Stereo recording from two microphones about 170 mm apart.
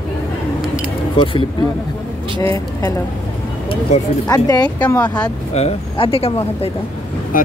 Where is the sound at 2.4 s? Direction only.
20° left (ahead or behind).